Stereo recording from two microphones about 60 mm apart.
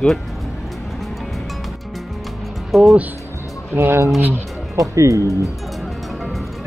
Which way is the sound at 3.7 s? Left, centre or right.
Right.